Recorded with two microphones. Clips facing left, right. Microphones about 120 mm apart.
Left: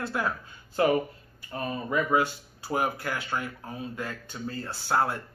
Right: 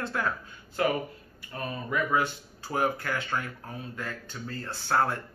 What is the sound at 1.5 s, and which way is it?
Speech, 25° left (ahead or behind).